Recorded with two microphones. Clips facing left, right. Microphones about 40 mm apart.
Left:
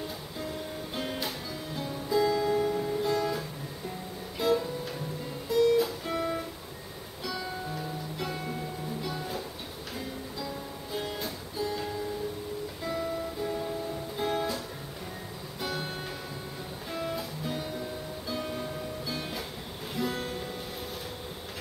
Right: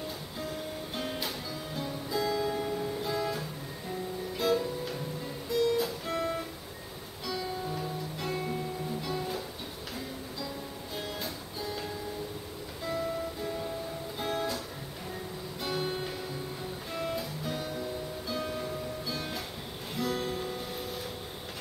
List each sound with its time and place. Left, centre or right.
0.9 s music: centre
10.9 s music: centre
15.6 s music: centre